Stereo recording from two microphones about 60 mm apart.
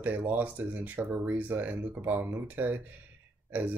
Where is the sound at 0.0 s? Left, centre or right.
Right.